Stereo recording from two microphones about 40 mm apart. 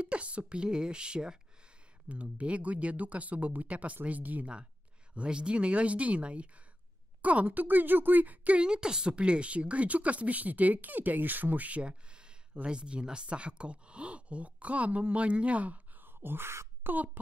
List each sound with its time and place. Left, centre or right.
0.0 s speech: right
2.0 s speech: right
5.1 s speech: right
8.5 s speech: right
11.8 s a sound: right
12.6 s speech: right
16.0 s wail: right
16.9 s speech: right